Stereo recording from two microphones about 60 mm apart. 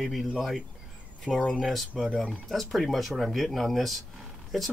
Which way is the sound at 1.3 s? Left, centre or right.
Centre.